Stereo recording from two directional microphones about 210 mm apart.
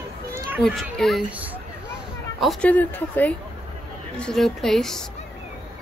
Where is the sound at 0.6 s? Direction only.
Centre (ahead or behind).